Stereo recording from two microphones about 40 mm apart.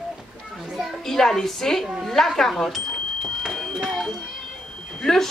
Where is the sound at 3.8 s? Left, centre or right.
Centre.